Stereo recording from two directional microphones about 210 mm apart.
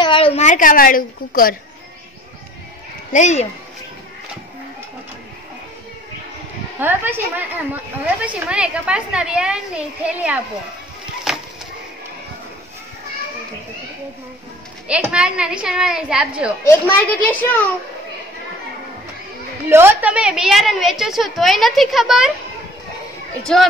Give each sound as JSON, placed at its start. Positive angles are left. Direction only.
{"t": 0.0, "sound": "a woman's voice", "side_deg": 25}
{"t": 3.1, "sound": "speech", "side_deg": 35}
{"t": 6.8, "sound": "a woman's voice", "side_deg": -10}
{"t": 11.3, "sound": "a sound", "side_deg": 0}
{"t": 14.9, "sound": "a woman's voice", "side_deg": -5}
{"t": 16.6, "sound": "a child's voice", "side_deg": 10}
{"t": 19.7, "sound": "a woman's voice", "side_deg": -10}
{"t": 23.4, "sound": "a woman's voice", "side_deg": 0}